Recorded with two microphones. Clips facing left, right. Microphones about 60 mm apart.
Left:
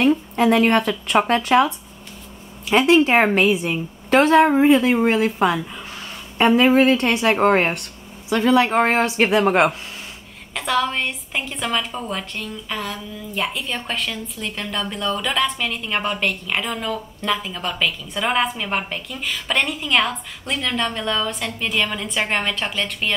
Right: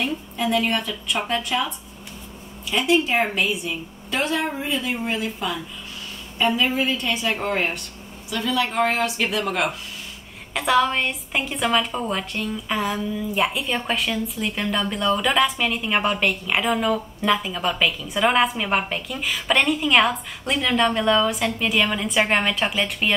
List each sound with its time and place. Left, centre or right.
0.0 s speech: left
2.7 s speech: left
4.8 s speech: left
7.2 s speech: left
10.5 s a woman's voice: centre